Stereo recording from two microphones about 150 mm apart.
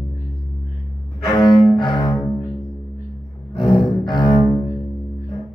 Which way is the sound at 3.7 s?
30° left (ahead or behind).